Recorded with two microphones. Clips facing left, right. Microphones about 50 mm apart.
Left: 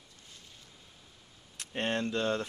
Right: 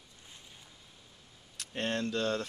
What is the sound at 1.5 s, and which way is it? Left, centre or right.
Speech, left.